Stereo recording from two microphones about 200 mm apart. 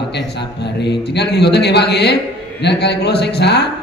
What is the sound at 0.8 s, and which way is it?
Mantra, 55° left (ahead or behind).